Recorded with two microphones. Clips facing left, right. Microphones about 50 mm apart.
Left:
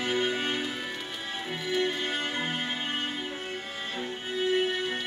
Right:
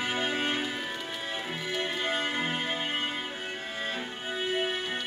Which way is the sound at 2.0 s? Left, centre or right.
Centre.